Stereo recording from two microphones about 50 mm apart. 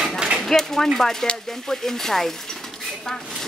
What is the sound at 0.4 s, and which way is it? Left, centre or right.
Speech, centre.